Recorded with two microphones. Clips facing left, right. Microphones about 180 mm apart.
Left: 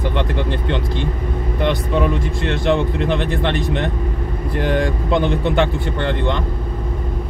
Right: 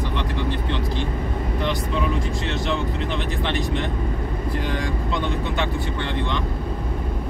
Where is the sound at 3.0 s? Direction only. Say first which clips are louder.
Left 7 dB; 55° left (ahead or behind).